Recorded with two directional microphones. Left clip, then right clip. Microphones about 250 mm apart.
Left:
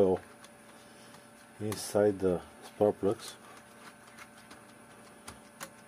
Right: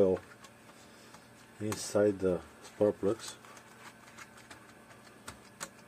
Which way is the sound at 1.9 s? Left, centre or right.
Left.